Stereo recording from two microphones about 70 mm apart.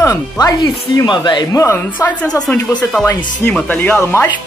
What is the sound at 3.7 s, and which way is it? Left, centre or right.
Speech, left.